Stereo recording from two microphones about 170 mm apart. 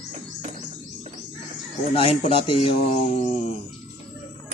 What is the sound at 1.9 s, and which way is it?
Speech, 35° left (ahead or behind).